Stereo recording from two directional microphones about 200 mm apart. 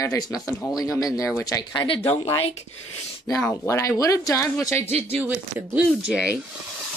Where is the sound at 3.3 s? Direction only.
15° left (ahead or behind).